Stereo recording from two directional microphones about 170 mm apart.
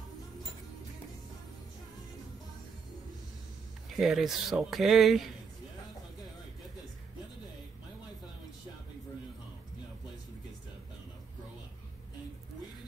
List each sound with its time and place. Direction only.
3.9 s speech: centre (ahead or behind)